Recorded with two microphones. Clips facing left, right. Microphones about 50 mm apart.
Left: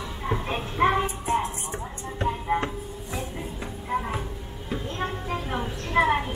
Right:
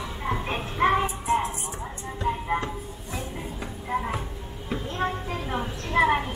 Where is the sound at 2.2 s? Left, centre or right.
Centre.